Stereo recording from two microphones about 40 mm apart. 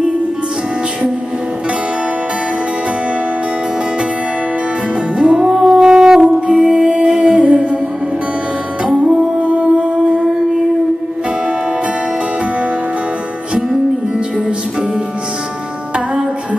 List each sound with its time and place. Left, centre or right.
5.2 s music: right
7.1 s humming: right
8.8 s music: right